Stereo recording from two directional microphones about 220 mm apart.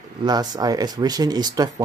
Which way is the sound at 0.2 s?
20° right (ahead or behind).